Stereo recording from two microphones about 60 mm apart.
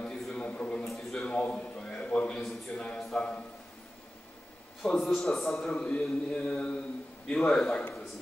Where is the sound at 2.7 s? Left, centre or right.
Centre.